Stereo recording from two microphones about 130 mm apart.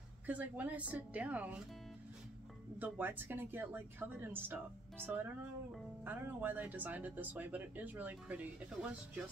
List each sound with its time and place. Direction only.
0.3 s speech: 10° right (ahead or behind)
2.8 s speech: 15° right (ahead or behind)